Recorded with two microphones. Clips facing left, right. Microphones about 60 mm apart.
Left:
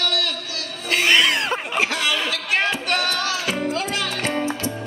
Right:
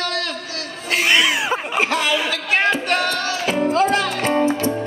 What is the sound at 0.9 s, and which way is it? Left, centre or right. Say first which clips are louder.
Cat: right 1 dB; centre.